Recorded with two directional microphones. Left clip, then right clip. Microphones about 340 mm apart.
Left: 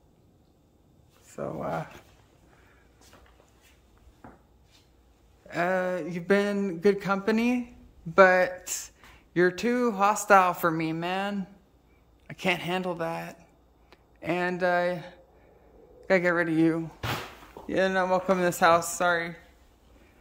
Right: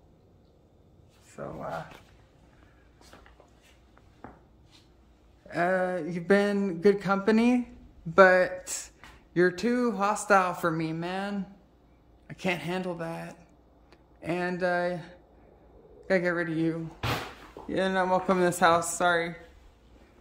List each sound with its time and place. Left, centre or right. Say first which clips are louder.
1.3 s speech: left 4 dB; left
5.5 s speech: even; centre